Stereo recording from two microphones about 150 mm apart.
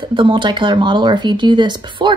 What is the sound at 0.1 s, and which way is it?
A woman's voice, 35° right (ahead or behind).